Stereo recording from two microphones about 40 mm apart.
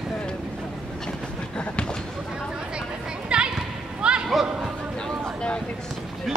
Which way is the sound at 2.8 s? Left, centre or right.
Right.